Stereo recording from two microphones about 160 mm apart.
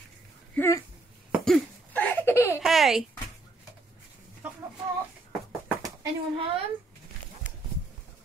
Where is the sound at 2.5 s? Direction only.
Centre (ahead or behind).